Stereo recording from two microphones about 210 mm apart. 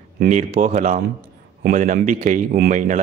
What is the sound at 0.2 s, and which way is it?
A man's voice, 35° right (ahead or behind).